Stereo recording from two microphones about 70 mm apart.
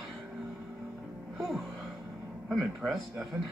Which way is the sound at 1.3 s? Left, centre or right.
Centre.